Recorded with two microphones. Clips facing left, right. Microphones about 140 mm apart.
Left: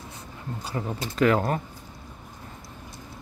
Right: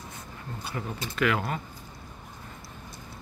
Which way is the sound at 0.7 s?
35° left (ahead or behind).